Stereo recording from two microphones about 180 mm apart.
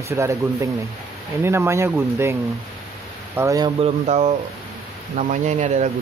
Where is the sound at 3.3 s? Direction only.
20° right (ahead or behind).